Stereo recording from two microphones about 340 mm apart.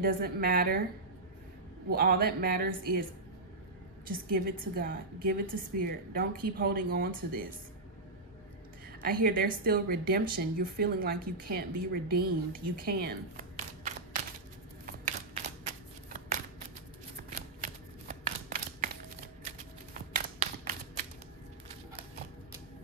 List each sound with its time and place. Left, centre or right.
0.0 s a woman's voice: right
1.9 s a woman's voice: right
4.1 s a woman's voice: right
9.0 s a woman's voice: right
14.9 s shuffling cards: right
19.4 s a sound: right